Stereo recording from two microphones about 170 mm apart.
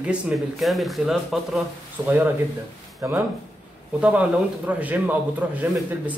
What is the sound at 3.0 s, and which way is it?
Speech, 15° right (ahead or behind).